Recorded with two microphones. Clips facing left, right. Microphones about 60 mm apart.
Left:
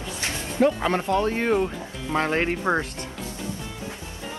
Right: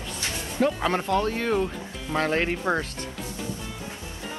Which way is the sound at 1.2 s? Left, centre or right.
Left.